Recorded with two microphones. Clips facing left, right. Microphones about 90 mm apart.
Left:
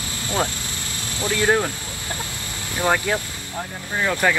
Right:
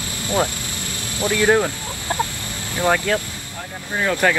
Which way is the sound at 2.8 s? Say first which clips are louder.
Right 2 dB; 15° left (ahead or behind).